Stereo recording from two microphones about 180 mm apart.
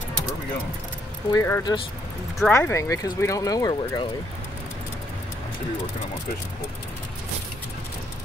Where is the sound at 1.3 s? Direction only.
15° left (ahead or behind).